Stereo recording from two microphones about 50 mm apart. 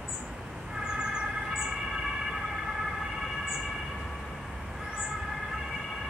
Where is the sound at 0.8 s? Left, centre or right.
Centre.